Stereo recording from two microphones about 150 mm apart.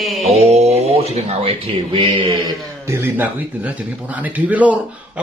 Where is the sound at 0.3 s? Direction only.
45° right (ahead or behind).